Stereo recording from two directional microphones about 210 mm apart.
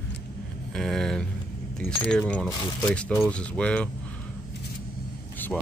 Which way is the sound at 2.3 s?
5° left (ahead or behind).